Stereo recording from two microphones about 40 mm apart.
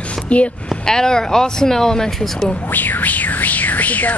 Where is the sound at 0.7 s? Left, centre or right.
Centre.